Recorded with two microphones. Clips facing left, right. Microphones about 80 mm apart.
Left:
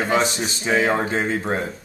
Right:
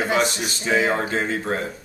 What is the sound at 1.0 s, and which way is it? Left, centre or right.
Speech, centre.